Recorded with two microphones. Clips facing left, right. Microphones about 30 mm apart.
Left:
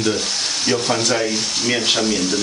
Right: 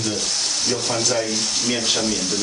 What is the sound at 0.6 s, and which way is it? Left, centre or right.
Sanding, left.